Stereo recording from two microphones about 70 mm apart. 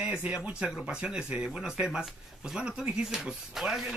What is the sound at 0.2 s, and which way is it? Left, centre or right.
Speech, centre.